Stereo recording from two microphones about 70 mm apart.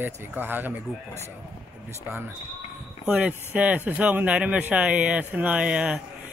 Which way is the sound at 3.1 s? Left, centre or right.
Centre.